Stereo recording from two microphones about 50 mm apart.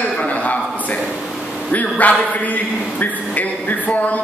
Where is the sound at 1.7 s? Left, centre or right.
Left.